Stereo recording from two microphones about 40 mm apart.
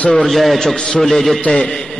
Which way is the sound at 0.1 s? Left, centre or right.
Centre.